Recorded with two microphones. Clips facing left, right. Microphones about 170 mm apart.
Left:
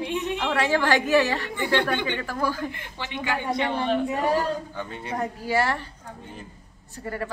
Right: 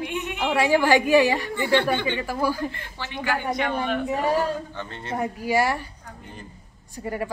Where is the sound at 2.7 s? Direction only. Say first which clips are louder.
Left 1 dB; 15° left (ahead or behind).